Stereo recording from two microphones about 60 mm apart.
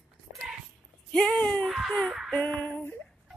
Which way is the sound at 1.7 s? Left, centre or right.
Centre.